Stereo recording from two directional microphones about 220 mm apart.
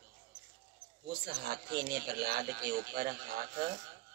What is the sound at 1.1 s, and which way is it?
Speech, 45° right (ahead or behind).